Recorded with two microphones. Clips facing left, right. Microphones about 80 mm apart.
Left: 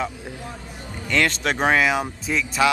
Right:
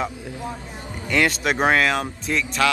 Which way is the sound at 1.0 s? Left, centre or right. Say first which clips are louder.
Right 1 dB; centre.